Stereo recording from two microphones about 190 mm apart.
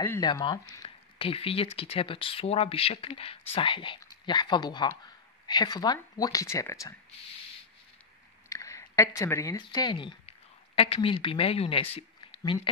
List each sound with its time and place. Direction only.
0.0 s speech: 15° left (ahead or behind)
0.3 s speech: 25° left (ahead or behind)
8.5 s a woman's voice: 15° left (ahead or behind)